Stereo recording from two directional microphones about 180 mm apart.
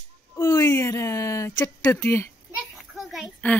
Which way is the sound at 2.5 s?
Centre (ahead or behind).